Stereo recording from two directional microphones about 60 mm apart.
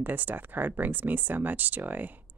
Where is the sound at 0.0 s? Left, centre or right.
Right.